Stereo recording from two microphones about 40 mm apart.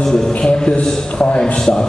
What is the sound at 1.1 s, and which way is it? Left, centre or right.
Speech, left.